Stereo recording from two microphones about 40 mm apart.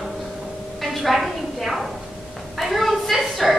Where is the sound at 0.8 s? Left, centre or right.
Centre.